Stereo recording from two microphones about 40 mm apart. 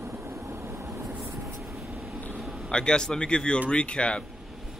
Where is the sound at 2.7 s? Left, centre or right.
Left.